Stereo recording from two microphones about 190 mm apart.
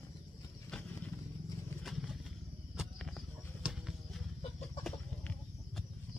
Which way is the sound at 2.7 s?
Centre (ahead or behind).